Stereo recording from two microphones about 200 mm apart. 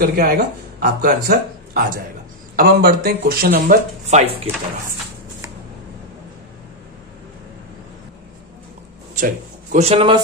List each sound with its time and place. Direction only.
0.0 s speech: 50° right (ahead or behind); by 4.4 s 35° right (ahead or behind)
9.1 s speech: 40° right (ahead or behind)